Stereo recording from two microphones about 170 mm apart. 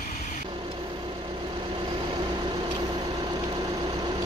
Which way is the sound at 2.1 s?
25° right (ahead or behind).